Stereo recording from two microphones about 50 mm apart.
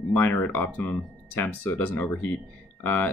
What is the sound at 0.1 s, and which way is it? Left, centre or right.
Speech, left.